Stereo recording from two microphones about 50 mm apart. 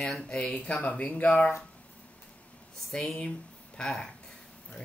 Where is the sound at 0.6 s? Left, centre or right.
Left.